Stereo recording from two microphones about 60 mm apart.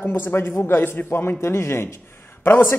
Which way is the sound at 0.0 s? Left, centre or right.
Left.